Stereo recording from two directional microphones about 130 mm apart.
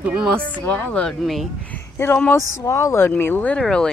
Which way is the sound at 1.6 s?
20° left (ahead or behind).